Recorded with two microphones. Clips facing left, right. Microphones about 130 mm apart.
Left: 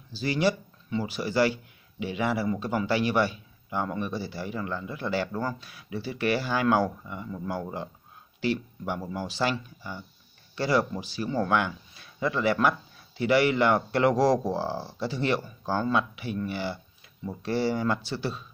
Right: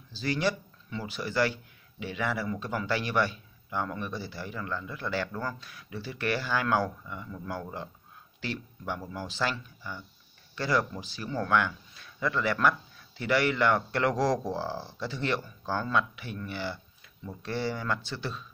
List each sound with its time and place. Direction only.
0.1 s speech: 10° left (ahead or behind)
10.5 s a sound: 10° left (ahead or behind)
10.9 s speech: 10° left (ahead or behind)
15.6 s speech: 20° left (ahead or behind)